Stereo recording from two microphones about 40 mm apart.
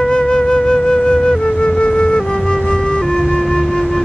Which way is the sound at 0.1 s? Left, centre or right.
Centre.